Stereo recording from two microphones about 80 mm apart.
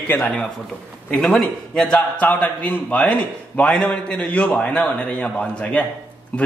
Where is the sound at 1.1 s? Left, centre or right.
Centre.